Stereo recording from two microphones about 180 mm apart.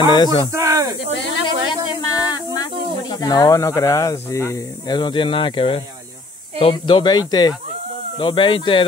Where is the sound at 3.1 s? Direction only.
20° left (ahead or behind).